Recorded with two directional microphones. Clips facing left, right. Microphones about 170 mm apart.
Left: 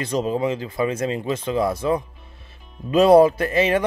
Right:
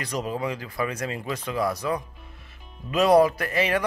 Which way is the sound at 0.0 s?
25° left (ahead or behind).